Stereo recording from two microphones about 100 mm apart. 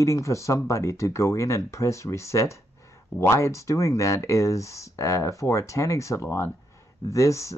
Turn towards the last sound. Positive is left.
turn(degrees=30)  # may be behind; listen again after turning